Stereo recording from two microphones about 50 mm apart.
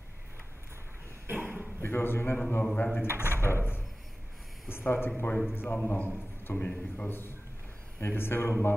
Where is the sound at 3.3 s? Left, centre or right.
Right.